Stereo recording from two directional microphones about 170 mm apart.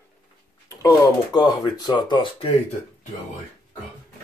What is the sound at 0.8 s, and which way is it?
Speech, 20° left (ahead or behind).